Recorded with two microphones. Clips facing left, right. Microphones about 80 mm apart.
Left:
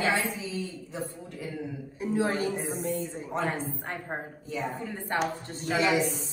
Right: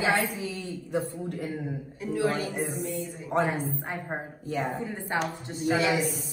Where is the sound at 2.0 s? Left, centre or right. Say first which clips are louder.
Even; left.